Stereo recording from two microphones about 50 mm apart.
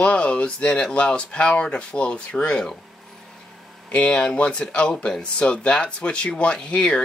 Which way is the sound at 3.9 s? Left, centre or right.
Left.